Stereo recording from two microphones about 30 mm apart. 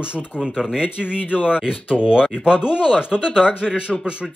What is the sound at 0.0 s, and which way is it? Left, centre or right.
Speech, right.